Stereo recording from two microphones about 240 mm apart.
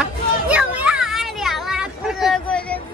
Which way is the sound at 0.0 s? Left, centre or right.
Centre.